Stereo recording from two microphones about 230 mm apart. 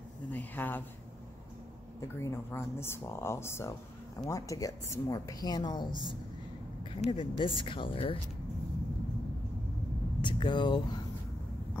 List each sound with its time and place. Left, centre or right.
0.3 s speech: centre
2.0 s speech: centre
10.2 s speech: centre